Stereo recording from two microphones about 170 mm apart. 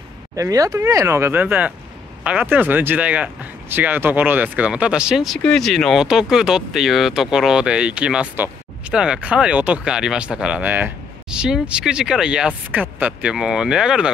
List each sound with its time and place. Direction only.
0.4 s speech: 20° right (ahead or behind); by 14.1 s 5° right (ahead or behind)